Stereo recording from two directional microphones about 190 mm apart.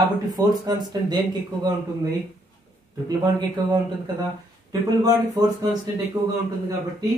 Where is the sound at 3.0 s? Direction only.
20° right (ahead or behind).